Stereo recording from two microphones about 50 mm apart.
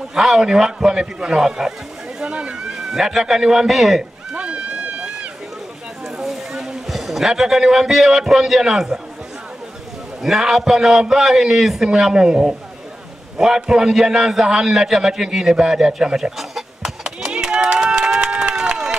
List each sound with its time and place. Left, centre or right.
0.1 s a man's voice: centre
4.3 s run: right
6.0 s speech: centre
10.2 s a man's voice: centre
18.2 s run: right